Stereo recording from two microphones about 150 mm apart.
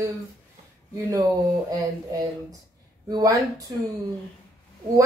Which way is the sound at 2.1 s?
25° right (ahead or behind).